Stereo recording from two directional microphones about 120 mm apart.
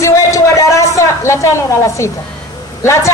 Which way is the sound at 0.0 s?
25° left (ahead or behind).